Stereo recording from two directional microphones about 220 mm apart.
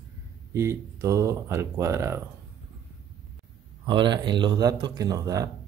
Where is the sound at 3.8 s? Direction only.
20° right (ahead or behind).